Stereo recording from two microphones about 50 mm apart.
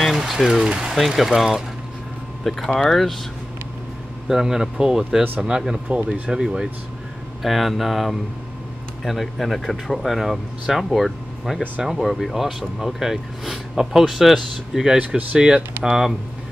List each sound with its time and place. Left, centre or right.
0.0 s speech: centre
4.3 s speech: centre
5.9 s speech: right
6.4 s speech: centre
15.0 s speech: right